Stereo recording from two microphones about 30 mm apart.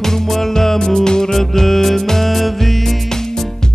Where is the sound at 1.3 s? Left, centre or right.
Centre.